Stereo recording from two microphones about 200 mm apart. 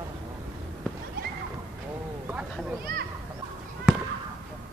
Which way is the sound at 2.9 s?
50° right (ahead or behind).